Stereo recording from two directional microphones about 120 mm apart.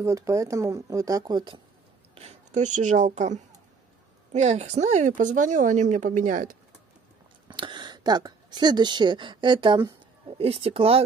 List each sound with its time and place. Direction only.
0.0 s speech: 25° right (ahead or behind)
2.1 s speech: 70° right (ahead or behind); by 6.4 s 90° right
7.4 s a woman's voice: 40° right (ahead or behind)
10.3 s speech: 55° right (ahead or behind)